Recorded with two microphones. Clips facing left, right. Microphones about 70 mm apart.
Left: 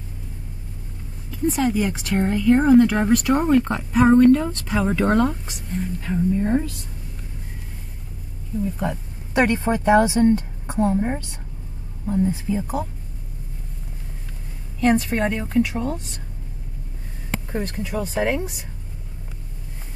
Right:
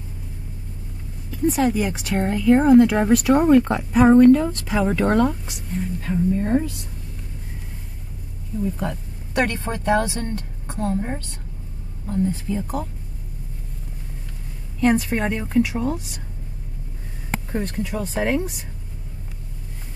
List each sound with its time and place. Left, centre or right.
1.3 s speech: centre
8.7 s a woman's voice: centre
14.8 s speech: centre
17.5 s speech: centre